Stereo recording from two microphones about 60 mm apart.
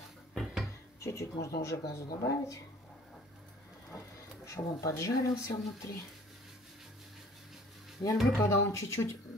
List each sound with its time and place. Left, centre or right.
0.3 s a sound: centre
1.0 s speech: left
4.5 s speech: left
8.0 s speech: left
8.4 s a woman's voice: left